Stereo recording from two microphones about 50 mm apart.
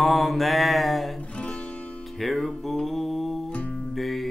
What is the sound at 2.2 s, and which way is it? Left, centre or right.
Music, centre.